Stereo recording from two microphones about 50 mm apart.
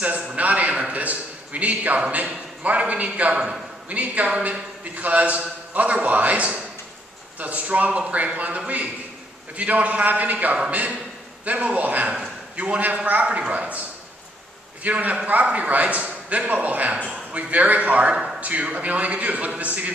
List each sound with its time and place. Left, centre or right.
0.0 s a man's voice: right